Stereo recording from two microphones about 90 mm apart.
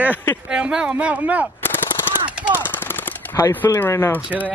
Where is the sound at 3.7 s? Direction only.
30° left (ahead or behind).